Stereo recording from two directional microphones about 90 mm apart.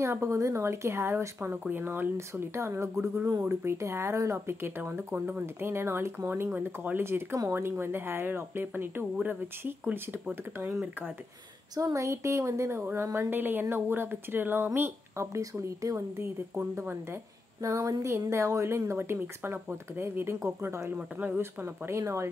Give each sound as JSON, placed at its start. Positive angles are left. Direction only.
{"t": 0.0, "sound": "a woman's voice", "side_deg": -30}
{"t": 11.7, "sound": "a woman's voice", "side_deg": -40}
{"t": 20.9, "sound": "speech", "side_deg": -15}
{"t": 21.4, "sound": "a woman's voice", "side_deg": -25}